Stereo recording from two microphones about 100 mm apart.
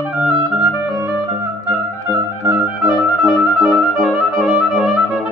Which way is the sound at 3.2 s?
Centre (ahead or behind).